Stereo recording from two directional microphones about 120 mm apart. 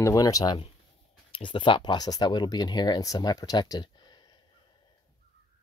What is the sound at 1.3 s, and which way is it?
Speech, 45° left (ahead or behind).